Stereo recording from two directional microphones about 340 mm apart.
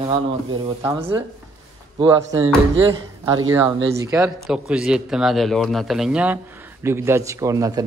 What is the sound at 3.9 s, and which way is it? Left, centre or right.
A man's voice, centre.